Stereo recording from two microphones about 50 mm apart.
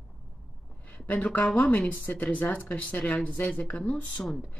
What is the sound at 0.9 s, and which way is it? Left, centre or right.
Speech, left.